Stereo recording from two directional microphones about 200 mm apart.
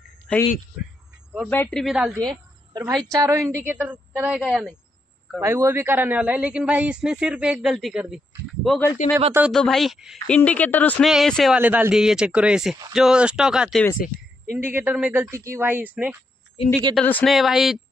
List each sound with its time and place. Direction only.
0.3 s speech: 5° left (ahead or behind)
1.5 s a woman's voice: 5° left (ahead or behind)
3.2 s a man's voice: 15° right (ahead or behind)
13.9 s a sound: 40° left (ahead or behind)
14.6 s a man's voice: 10° right (ahead or behind)
16.9 s a woman's voice: 5° left (ahead or behind)